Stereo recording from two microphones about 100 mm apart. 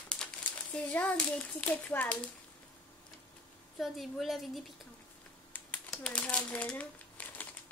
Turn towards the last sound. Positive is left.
turn(degrees=15)  # may be behind; listen again after turning